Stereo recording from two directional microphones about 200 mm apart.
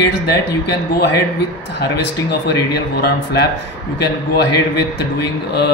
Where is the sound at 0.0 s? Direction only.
55° left (ahead or behind).